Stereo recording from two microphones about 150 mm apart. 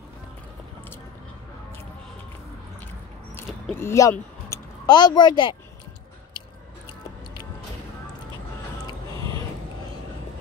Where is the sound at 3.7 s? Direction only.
20° left (ahead or behind).